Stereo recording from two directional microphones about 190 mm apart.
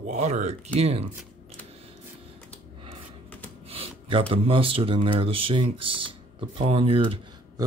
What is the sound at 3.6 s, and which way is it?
Speech, 30° right (ahead or behind).